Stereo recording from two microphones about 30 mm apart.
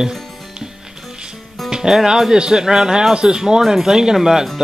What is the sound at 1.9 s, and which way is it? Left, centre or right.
Speech, centre.